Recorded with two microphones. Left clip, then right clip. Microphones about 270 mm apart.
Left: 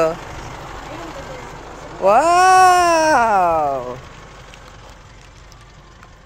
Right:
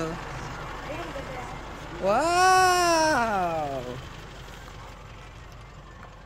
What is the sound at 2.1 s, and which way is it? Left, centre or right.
Speech, centre.